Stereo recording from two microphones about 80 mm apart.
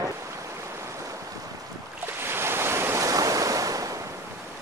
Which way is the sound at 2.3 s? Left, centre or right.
Right.